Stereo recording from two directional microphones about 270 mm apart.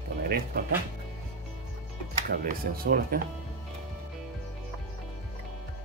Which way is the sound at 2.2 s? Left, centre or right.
Right.